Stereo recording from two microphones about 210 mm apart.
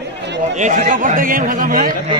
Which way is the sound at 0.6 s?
35° right (ahead or behind).